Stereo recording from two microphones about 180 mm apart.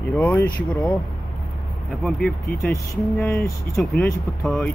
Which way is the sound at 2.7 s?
15° left (ahead or behind).